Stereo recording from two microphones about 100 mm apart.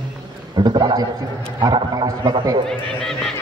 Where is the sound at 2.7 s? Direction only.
5° left (ahead or behind).